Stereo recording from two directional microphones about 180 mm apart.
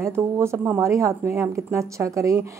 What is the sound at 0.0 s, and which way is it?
Speech, 15° right (ahead or behind).